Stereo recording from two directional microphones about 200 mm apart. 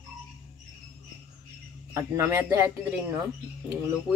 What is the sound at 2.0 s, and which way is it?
Speech, 10° right (ahead or behind).